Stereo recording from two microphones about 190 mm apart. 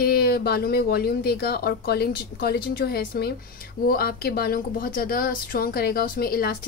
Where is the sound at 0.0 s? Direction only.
55° left (ahead or behind).